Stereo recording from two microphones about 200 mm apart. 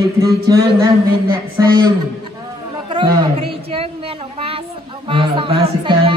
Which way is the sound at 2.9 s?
20° right (ahead or behind).